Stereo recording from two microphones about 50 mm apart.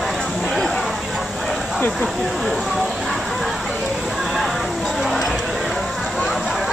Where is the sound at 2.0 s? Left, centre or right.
Centre.